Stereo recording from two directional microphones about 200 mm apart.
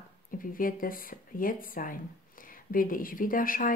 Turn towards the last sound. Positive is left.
turn(degrees=45)  # may be behind; listen again after turning